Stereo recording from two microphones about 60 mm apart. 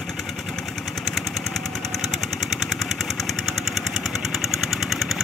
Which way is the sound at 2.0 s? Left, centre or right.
Centre.